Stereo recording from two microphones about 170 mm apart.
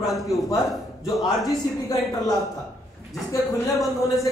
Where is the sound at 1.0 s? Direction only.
20° left (ahead or behind).